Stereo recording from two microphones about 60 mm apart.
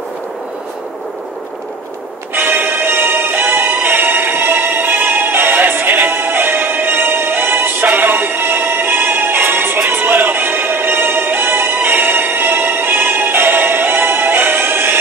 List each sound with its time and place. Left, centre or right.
2.3 s music: right